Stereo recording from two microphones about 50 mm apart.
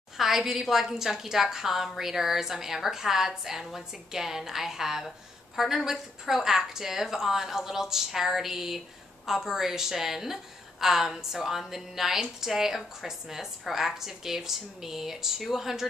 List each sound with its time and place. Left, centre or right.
0.2 s a woman's voice: centre